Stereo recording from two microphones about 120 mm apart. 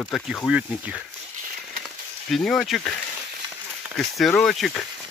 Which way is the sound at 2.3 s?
5° left (ahead or behind).